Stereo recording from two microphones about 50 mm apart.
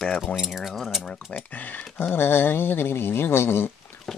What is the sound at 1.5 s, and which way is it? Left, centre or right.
Speech, left.